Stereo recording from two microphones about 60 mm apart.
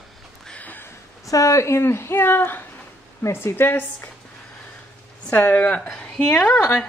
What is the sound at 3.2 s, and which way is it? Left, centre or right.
Speech, left.